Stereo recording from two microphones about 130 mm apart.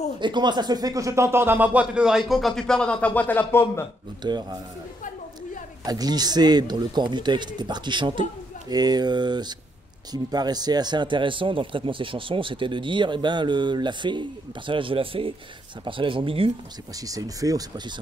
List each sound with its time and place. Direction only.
0.2 s speech: 35° right (ahead or behind); by 3.8 s 15° left (ahead or behind)
4.2 s speech: 35° right (ahead or behind)
5.9 s a man's voice: 30° right (ahead or behind)
16.9 s speech: 30° right (ahead or behind)